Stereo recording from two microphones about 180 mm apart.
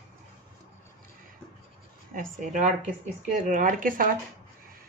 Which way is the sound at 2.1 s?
45° right (ahead or behind).